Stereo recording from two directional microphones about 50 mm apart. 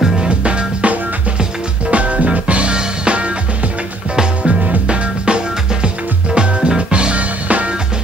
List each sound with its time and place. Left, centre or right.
0.4 s music: right
4.5 s music: right